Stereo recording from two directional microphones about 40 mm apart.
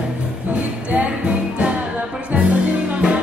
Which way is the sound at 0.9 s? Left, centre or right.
Right.